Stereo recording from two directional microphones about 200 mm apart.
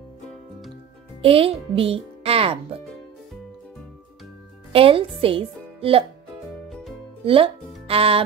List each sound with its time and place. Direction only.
1.2 s a child's voice: 30° right (ahead or behind)
4.7 s a child's voice: 25° right (ahead or behind)
6.7 s music: centre (ahead or behind)
7.2 s speech: 25° right (ahead or behind)